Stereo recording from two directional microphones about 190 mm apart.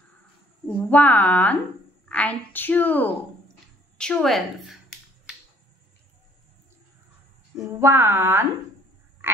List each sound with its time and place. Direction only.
0.7 s a woman's voice: 10° left (ahead or behind)
7.6 s speech: 15° right (ahead or behind)
9.2 s frog: 10° right (ahead or behind)